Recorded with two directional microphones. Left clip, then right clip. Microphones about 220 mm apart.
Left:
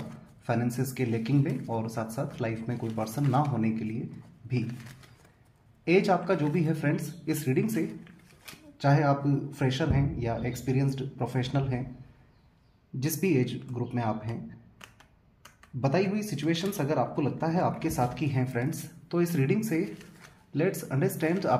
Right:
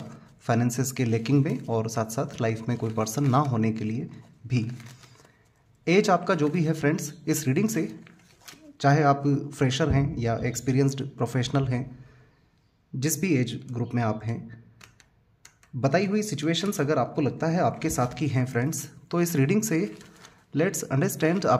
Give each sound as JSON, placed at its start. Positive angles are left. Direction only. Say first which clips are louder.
{"t": 0.5, "sound": "speech", "louder": "right 4 dB", "side_deg": -45}
{"t": 5.9, "sound": "speech", "louder": "right 3 dB", "side_deg": -45}
{"t": 13.0, "sound": "a man's voice", "louder": "right 1 dB", "side_deg": -40}
{"t": 15.8, "sound": "a man's voice", "louder": "right 4 dB", "side_deg": -40}